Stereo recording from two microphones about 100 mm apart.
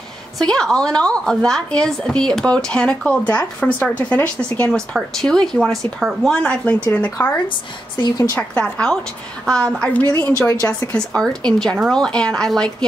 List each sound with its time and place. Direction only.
0.4 s a woman's voice: 5° left (ahead or behind)
6.3 s a woman's voice: 10° left (ahead or behind)
8.0 s a woman's voice: 40° left (ahead or behind)
8.4 s a woman's voice: 10° left (ahead or behind)
10.4 s a woman's voice: 25° left (ahead or behind)
10.9 s a woman's voice: 10° left (ahead or behind)